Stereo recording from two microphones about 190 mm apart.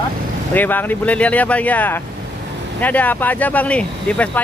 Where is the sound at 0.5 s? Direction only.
10° left (ahead or behind).